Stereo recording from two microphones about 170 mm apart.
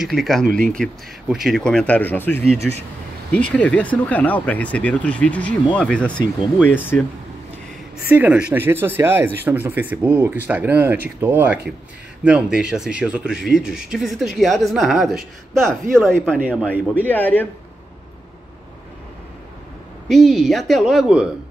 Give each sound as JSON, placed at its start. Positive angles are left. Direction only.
{"t": 0.0, "sound": "a woman's voice", "side_deg": 0}
{"t": 0.5, "sound": "speech", "side_deg": -55}
{"t": 1.3, "sound": "speech", "side_deg": 0}
{"t": 2.6, "sound": "a woman's voice", "side_deg": 0}
{"t": 8.1, "sound": "a woman's voice", "side_deg": -10}
{"t": 20.1, "sound": "a woman's voice", "side_deg": 0}